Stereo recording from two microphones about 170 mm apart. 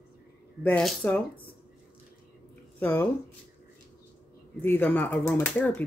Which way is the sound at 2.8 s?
10° left (ahead or behind).